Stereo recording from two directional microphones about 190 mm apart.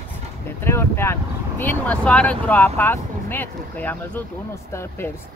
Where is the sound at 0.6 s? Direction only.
15° left (ahead or behind).